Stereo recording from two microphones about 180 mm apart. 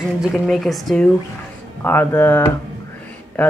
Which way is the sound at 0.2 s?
Centre (ahead or behind).